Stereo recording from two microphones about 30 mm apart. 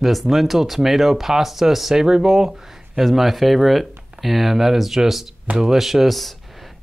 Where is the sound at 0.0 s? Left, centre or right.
Centre.